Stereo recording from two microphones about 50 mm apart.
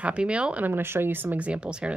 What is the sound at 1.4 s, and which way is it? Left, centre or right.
Speech, right.